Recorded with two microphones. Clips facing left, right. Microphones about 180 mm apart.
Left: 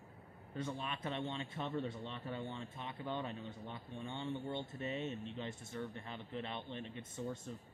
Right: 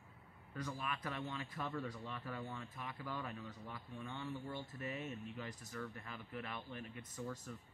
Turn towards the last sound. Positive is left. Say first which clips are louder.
# left 3 dB
turn(degrees=25)  # may be behind; listen again after turning